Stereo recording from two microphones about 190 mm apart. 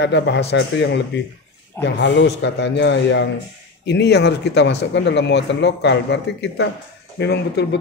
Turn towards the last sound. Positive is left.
turn(degrees=60)  # may be behind; listen again after turning